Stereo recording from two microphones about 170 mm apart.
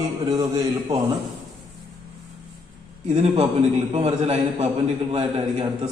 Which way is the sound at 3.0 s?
40° right (ahead or behind).